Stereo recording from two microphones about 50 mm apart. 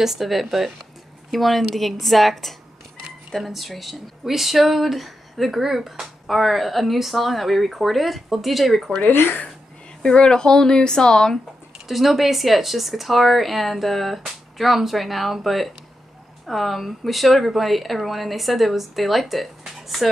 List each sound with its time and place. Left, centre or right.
0.0 s speech: centre
9.0 s speech: left
10.0 s speech: centre
11.9 s speech: centre